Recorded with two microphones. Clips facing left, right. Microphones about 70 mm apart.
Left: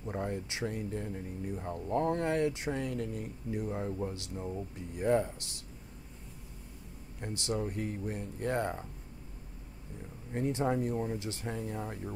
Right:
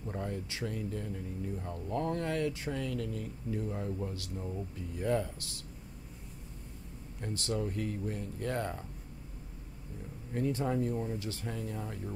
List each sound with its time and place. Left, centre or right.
0.0 s speech: left
7.4 s speech: centre
10.5 s speech: left